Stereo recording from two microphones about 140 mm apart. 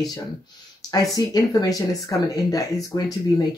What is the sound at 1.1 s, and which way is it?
Speech, 30° left (ahead or behind).